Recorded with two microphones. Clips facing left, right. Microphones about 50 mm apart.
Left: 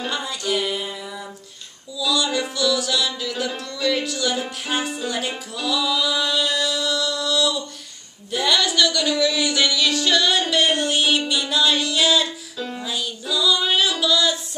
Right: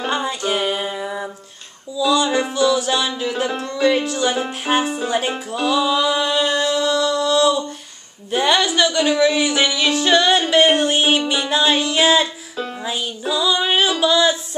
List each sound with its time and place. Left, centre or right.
0.0 s music: right
8.3 s a woman's voice: right
8.6 s music: right